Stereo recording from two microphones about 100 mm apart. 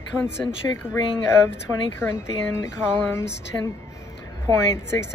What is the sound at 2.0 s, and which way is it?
Speech, 25° left (ahead or behind).